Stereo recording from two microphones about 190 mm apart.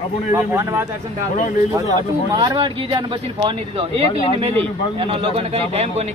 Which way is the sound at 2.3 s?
20° right (ahead or behind).